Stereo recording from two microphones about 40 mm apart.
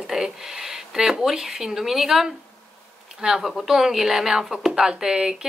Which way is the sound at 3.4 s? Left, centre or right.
Centre.